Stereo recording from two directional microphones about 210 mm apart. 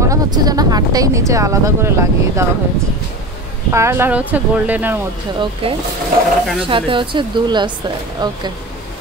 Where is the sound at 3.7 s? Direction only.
10° right (ahead or behind).